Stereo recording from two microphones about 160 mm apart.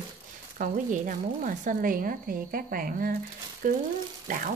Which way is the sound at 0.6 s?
55° right (ahead or behind).